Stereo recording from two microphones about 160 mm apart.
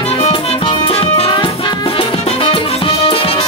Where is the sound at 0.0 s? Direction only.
40° left (ahead or behind).